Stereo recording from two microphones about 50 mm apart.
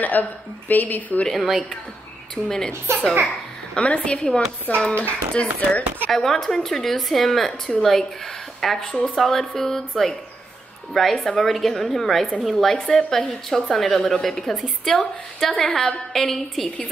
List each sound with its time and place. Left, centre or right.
0.0 s speech: left
1.3 s a woman's voice: centre
2.4 s speech: centre
3.7 s speech: left
6.1 s a woman's voice: centre